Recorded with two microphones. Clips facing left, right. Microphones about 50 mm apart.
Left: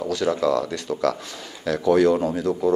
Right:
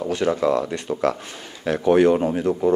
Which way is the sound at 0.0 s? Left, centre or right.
Right.